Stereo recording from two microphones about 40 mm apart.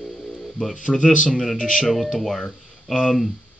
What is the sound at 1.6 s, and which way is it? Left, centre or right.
Speech, centre.